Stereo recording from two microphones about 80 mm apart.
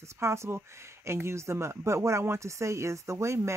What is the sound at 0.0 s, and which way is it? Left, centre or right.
Speech, right.